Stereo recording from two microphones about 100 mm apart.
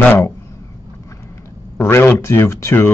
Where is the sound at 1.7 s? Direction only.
25° left (ahead or behind).